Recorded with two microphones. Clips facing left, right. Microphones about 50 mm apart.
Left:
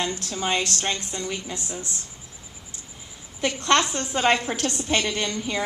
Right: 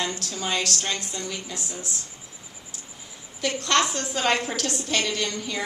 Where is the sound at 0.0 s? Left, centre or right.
Left.